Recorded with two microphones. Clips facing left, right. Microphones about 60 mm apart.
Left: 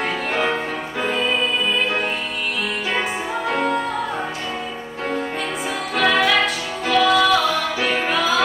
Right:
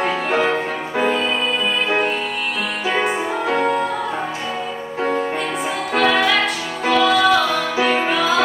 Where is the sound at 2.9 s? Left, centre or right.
Centre.